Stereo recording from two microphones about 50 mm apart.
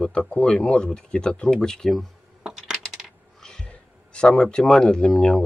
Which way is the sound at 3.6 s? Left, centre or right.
Left.